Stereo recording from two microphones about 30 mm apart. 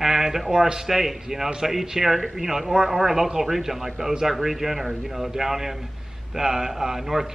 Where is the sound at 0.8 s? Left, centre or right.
Centre.